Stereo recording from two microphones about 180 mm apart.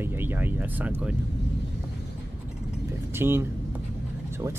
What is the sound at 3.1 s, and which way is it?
Vehicle, 10° right (ahead or behind).